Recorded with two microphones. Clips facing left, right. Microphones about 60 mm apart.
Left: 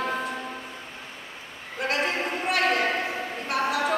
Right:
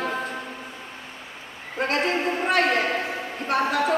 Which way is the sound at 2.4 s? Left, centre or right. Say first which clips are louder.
Right 1 dB; right.